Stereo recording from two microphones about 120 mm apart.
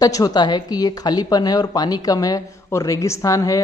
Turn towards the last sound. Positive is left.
turn(degrees=30)  # may be behind; listen again after turning